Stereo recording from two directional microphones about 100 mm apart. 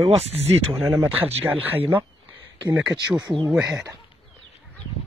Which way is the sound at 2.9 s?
45° right (ahead or behind).